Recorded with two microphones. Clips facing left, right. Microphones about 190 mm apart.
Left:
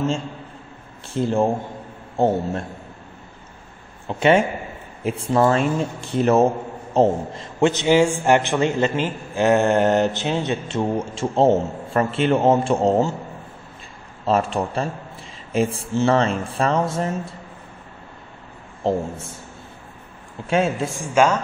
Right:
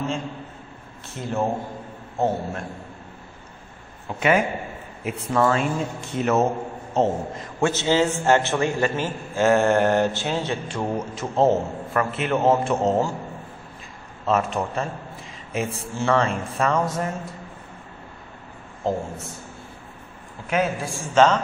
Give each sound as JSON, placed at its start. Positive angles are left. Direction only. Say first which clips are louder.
{"t": 1.0, "sound": "speech", "louder": "left 6 dB", "side_deg": 30}
{"t": 4.2, "sound": "a man's voice", "louder": "left 4 dB", "side_deg": 30}
{"t": 14.2, "sound": "speech", "louder": "left 2 dB", "side_deg": 30}
{"t": 18.9, "sound": "a man's voice", "louder": "left 3 dB", "side_deg": 25}
{"t": 20.4, "sound": "a man's voice", "louder": "left 3 dB", "side_deg": 25}